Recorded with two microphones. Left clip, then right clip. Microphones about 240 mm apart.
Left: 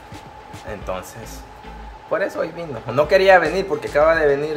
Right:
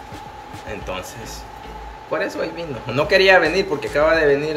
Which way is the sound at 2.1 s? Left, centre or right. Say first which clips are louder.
Left 1 dB; left.